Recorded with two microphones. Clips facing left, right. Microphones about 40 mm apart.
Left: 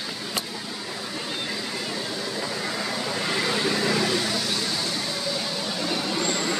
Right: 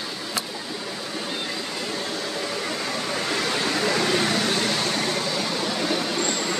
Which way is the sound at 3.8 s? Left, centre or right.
Right.